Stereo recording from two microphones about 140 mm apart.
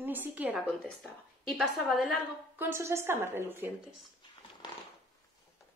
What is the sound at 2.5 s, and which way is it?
A woman's voice, 15° right (ahead or behind).